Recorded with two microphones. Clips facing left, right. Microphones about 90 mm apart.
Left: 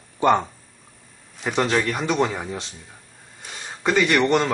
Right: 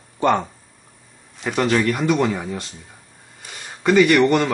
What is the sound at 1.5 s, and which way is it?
Speech, 15° left (ahead or behind).